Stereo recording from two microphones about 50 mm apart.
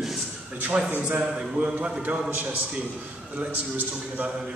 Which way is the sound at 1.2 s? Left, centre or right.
Right.